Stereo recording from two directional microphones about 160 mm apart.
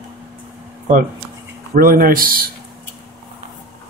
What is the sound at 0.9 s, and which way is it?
Speech, 55° right (ahead or behind).